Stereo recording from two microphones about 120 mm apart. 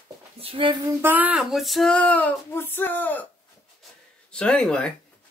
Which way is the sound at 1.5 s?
Centre (ahead or behind).